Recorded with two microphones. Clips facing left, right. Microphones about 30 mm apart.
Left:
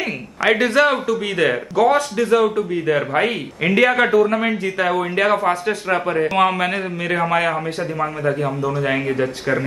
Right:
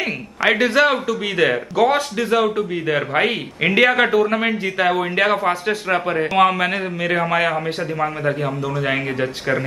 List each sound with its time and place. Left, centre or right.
0.0 s a man's voice: centre